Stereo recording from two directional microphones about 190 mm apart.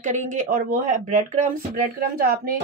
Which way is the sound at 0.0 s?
40° right (ahead or behind).